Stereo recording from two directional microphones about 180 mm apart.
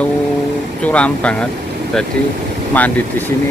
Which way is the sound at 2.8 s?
10° left (ahead or behind).